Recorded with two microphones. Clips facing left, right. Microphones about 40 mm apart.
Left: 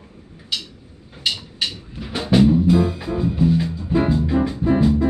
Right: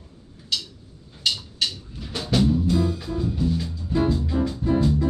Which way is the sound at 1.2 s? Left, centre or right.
Left.